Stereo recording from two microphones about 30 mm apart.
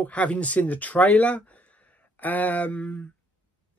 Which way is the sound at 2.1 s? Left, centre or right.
Left.